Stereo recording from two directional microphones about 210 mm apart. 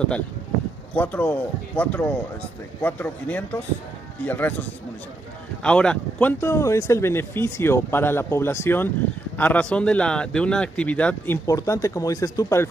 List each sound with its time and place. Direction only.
0.9 s speech: 10° left (ahead or behind)